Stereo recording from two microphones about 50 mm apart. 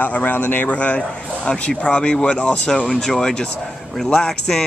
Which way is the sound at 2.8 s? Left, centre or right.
Centre.